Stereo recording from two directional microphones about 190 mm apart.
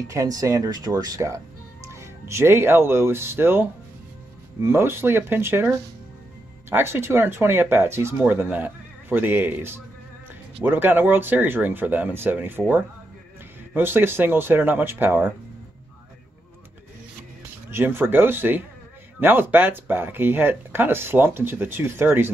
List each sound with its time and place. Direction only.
0.1 s speech: 15° right (ahead or behind)
4.6 s speech: 10° right (ahead or behind)
17.6 s speech: 10° right (ahead or behind)